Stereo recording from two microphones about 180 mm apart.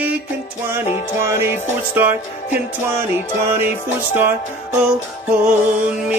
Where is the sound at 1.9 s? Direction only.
10° right (ahead or behind).